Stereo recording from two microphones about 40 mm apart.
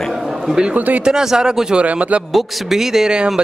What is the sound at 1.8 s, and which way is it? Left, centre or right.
Speech, right.